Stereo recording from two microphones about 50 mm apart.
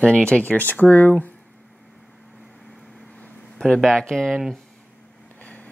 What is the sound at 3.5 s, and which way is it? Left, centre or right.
Speech, centre.